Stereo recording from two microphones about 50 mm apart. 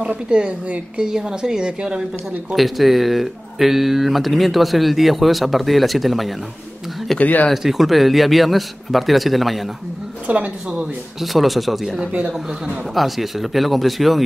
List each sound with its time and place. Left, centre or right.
0.0 s a woman's voice: centre
2.5 s speech: centre
7.2 s speech: left
7.5 s speech: centre
10.2 s speech: right
11.1 s speech: centre